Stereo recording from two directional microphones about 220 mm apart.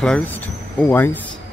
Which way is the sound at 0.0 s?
5° left (ahead or behind).